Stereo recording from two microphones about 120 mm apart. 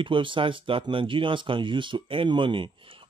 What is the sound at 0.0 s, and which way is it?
Speech, 45° right (ahead or behind).